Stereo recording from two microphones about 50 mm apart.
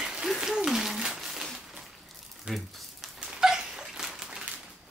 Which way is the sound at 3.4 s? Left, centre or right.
Centre.